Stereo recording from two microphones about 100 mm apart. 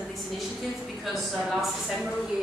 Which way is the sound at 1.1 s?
Centre (ahead or behind).